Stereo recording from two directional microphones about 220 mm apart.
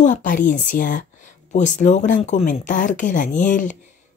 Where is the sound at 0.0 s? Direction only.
35° left (ahead or behind).